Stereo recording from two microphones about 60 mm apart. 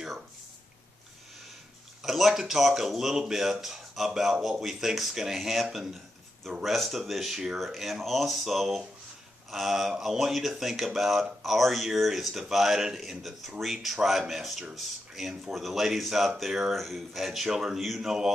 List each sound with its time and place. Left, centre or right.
2.0 s speech: centre